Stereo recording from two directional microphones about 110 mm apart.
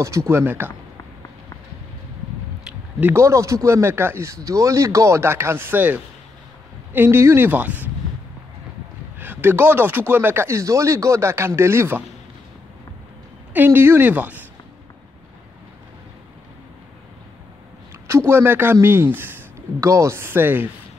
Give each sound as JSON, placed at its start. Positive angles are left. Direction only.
{"t": 0.3, "sound": "speech", "side_deg": -20}
{"t": 3.0, "sound": "speech", "side_deg": -25}
{"t": 9.2, "sound": "speech", "side_deg": -20}
{"t": 13.5, "sound": "speech", "side_deg": -20}
{"t": 18.3, "sound": "speech", "side_deg": -20}